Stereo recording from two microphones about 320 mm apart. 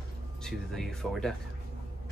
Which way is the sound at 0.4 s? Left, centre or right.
Centre.